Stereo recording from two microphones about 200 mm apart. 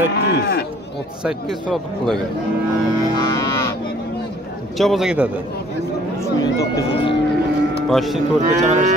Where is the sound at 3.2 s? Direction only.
20° left (ahead or behind).